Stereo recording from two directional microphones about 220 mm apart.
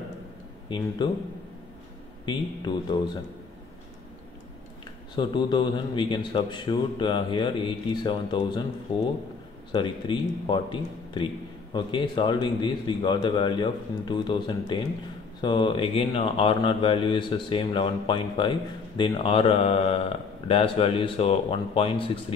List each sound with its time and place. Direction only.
0.7 s speech: 20° left (ahead or behind)
2.2 s speech: 20° left (ahead or behind)
5.1 s speech: 20° left (ahead or behind)
9.7 s speech: 20° left (ahead or behind)